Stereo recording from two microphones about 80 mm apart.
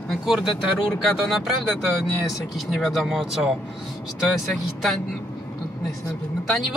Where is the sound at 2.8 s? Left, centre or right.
Centre.